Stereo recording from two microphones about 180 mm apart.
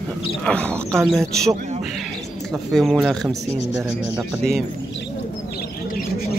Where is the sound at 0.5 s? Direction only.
5° left (ahead or behind).